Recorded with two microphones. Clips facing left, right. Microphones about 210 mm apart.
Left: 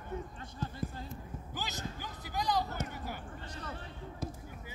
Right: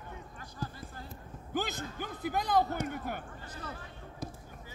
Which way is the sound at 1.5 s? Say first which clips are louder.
Right 7 dB; 55° right (ahead or behind).